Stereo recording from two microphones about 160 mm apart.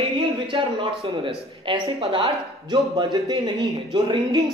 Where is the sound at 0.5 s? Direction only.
30° right (ahead or behind).